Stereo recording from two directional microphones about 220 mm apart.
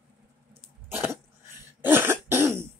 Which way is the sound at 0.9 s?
10° right (ahead or behind).